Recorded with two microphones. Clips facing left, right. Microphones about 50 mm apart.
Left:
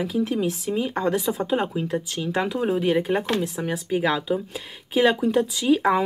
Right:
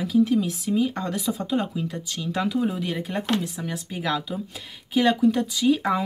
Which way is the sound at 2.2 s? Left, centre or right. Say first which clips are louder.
Right 1 dB; left.